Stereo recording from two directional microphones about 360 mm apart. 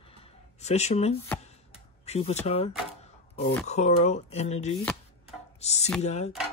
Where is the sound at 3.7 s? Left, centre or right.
Centre.